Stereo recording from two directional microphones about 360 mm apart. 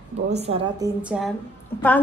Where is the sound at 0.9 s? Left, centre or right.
Centre.